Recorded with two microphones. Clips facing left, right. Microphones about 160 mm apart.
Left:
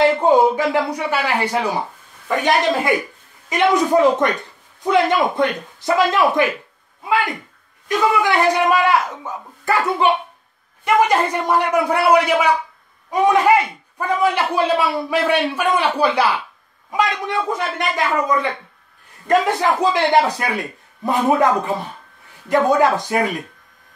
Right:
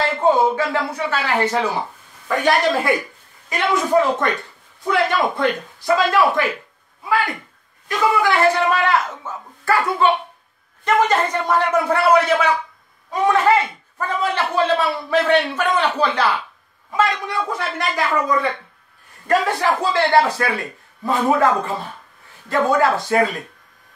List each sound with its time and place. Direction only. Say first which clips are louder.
0.0 s a man's voice: left 3 dB; 15° left (ahead or behind)
8.2 s a man's voice: even; 15° left (ahead or behind)
22.5 s a man's voice: left 2 dB; 15° left (ahead or behind)